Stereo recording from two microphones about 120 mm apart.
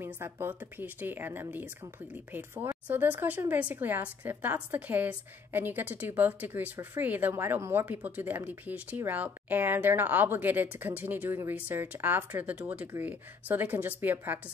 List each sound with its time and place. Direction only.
0.0 s a woman's voice: 20° right (ahead or behind)